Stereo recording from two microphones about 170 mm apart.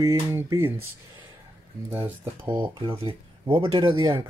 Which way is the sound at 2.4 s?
30° right (ahead or behind).